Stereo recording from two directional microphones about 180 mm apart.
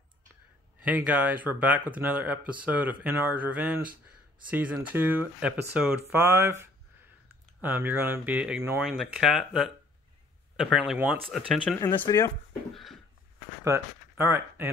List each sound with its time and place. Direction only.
0.7 s speech: 10° right (ahead or behind)
11.8 s speech: 20° left (ahead or behind)
12.7 s a sound: centre (ahead or behind)
13.7 s speech: 15° right (ahead or behind)